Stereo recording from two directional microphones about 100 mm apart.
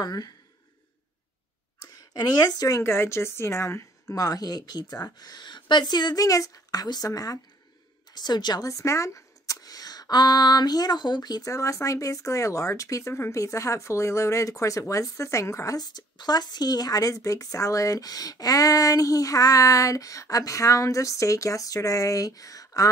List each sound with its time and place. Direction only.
0.0 s speech: 40° left (ahead or behind)
2.0 s a woman's voice: 40° left (ahead or behind)
8.6 s speech: 30° left (ahead or behind)